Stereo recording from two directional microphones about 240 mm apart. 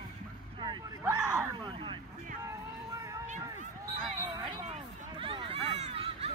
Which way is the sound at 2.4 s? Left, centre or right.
Centre.